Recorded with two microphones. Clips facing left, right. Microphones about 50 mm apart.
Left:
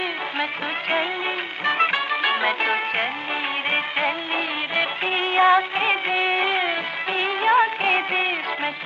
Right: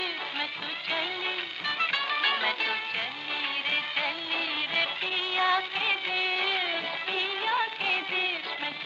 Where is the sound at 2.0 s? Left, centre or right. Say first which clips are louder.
Left 6 dB; left.